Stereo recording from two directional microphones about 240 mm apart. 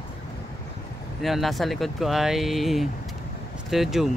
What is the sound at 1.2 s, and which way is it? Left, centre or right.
Speech, centre.